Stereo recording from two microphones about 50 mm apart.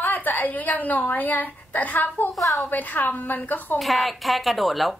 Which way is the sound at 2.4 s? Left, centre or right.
Centre.